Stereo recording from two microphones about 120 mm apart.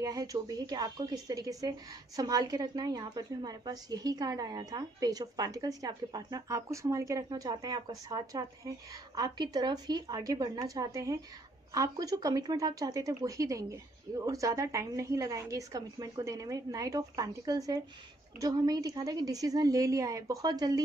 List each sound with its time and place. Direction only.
0.0 s a woman's voice: 30° right (ahead or behind)